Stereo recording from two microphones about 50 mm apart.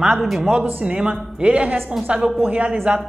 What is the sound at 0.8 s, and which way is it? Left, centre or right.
A woman's voice, centre.